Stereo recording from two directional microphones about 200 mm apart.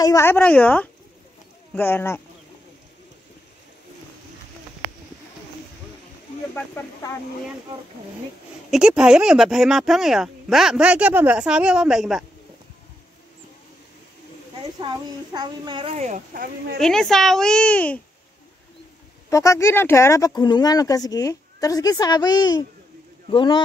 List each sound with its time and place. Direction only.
0.0 s speech: 15° left (ahead or behind)
6.5 s speech: 15° left (ahead or behind)
8.6 s speech: 5° right (ahead or behind)
14.8 s a child's voice: 20° right (ahead or behind)
16.8 s speech: centre (ahead or behind)
19.3 s speech: 15° left (ahead or behind)